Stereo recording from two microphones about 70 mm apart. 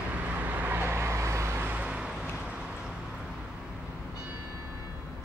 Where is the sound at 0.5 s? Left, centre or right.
Right.